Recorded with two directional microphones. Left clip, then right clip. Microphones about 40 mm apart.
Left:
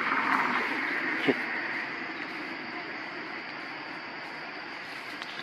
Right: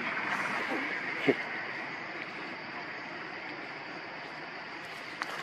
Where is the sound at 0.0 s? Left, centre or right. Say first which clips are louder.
Left 6 dB; centre.